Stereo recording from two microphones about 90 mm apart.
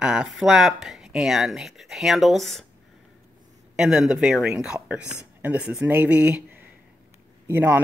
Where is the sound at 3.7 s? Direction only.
5° right (ahead or behind).